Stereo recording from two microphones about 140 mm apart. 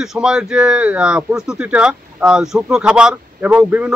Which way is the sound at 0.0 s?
5° right (ahead or behind).